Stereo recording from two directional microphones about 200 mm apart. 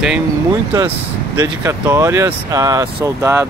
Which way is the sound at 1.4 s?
10° right (ahead or behind).